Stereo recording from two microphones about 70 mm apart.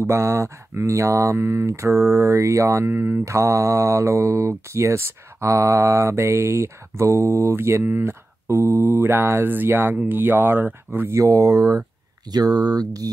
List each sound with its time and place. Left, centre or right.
0.0 s speech: right
2.9 s speech: right
11.1 s speech: right
12.3 s speech: right